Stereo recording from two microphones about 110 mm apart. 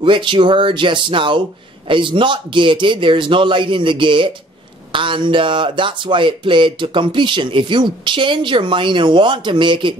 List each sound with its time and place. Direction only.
0.0 s speech: 50° right (ahead or behind)